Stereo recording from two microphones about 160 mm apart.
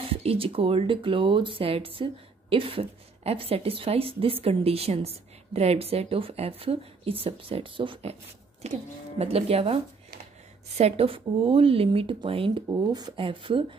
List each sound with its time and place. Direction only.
0.0 s a woman's voice: 35° right (ahead or behind)
10.8 s a woman's voice: 40° right (ahead or behind)